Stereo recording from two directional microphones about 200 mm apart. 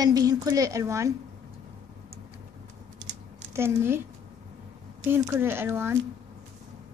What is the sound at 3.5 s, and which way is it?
Speech, 10° right (ahead or behind).